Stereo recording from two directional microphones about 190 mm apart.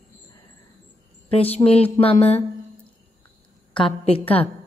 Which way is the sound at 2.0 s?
35° left (ahead or behind).